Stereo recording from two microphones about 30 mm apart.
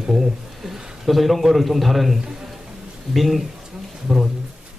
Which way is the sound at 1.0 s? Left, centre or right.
Centre.